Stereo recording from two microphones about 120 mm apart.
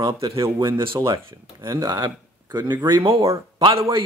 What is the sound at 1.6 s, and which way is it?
Speech, 30° right (ahead or behind).